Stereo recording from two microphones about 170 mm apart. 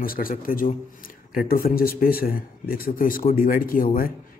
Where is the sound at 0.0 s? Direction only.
55° left (ahead or behind).